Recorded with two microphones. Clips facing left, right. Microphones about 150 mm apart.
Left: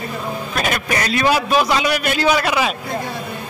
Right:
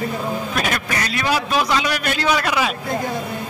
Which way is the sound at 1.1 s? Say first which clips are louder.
Left 5 dB; 25° left (ahead or behind).